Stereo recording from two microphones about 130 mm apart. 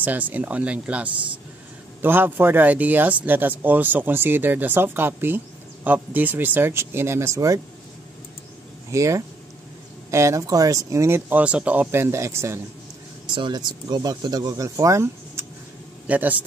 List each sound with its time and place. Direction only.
0.0 s speech: 15° right (ahead or behind)
8.9 s speech: 25° right (ahead or behind)
13.3 s speech: 35° right (ahead or behind); by 16.3 s 10° right (ahead or behind)